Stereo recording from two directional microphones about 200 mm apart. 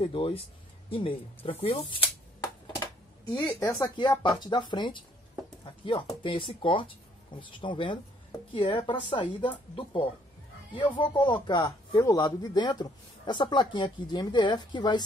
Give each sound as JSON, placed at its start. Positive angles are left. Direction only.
{"t": 0.0, "sound": "speech", "side_deg": 25}
{"t": 2.7, "sound": "a sound", "side_deg": 15}
{"t": 3.8, "sound": "speech", "side_deg": 20}
{"t": 10.7, "sound": "speech", "side_deg": 25}